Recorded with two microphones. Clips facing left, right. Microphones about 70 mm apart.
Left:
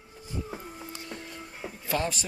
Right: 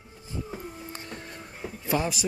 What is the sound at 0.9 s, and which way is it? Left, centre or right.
Music, right.